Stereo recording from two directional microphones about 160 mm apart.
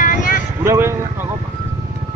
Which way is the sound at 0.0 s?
55° left (ahead or behind).